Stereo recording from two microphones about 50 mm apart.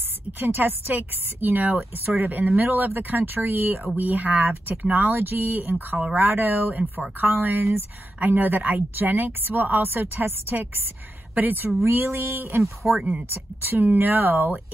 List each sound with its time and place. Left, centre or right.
0.3 s a woman's voice: right
11.9 s a woman's voice: right
12.8 s speech: centre
13.3 s a woman's voice: right